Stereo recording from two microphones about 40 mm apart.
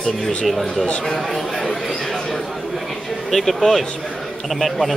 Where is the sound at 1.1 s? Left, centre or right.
Centre.